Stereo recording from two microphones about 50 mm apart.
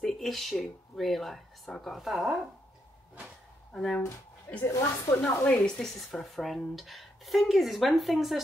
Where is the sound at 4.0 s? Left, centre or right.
Left.